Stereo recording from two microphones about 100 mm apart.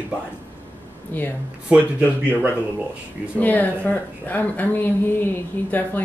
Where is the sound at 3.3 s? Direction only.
15° left (ahead or behind).